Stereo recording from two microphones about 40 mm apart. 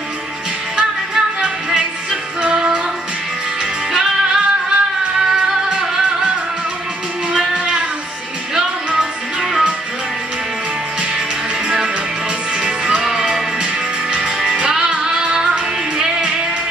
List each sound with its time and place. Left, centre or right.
0.7 s music: right
3.9 s music: centre
7.3 s music: right
8.5 s music: centre
11.6 s music: centre